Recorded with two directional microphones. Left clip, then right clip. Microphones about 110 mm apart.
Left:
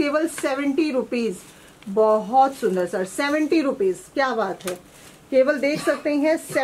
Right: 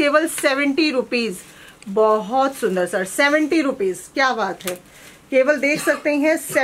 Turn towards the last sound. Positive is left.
turn(degrees=-40)  # may be behind; listen again after turning